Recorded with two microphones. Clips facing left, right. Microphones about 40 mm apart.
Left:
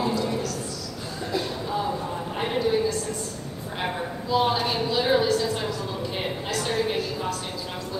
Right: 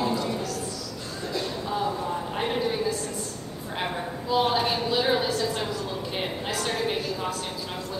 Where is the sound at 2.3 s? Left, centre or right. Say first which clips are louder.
Left 2 dB; centre.